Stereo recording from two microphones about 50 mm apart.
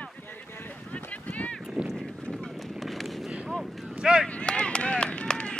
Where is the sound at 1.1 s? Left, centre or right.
Left.